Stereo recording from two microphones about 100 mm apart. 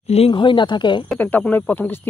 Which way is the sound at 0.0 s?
90° left.